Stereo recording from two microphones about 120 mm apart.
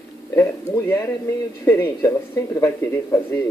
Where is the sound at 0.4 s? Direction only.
20° left (ahead or behind).